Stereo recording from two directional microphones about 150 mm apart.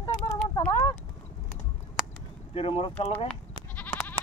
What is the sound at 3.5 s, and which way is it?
Goat, 10° left (ahead or behind).